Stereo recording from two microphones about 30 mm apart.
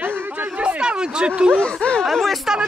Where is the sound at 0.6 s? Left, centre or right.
Right.